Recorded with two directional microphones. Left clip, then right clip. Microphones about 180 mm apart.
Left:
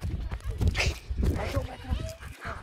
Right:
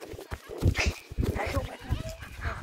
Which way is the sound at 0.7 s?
25° left (ahead or behind).